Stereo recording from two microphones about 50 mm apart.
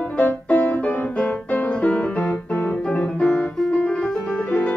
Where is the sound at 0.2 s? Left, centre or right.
Left.